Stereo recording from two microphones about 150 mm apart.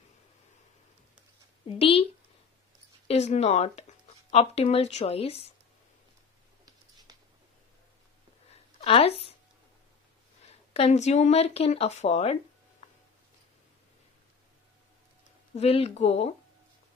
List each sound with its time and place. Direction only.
1.7 s speech: 40° left (ahead or behind)
3.1 s speech: 45° left (ahead or behind)
8.8 s speech: 40° left (ahead or behind)
10.5 s speech: 45° left (ahead or behind)
15.5 s speech: 45° left (ahead or behind)